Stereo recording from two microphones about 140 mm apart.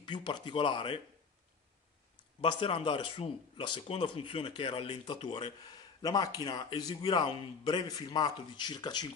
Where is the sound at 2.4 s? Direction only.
40° left (ahead or behind).